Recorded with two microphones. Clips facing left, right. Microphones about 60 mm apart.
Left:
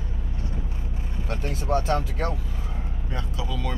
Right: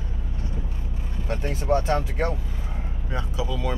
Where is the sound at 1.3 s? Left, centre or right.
Right.